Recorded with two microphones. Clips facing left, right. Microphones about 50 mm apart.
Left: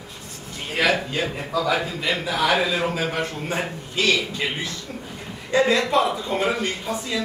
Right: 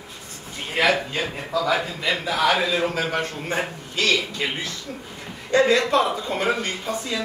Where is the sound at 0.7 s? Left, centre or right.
Centre.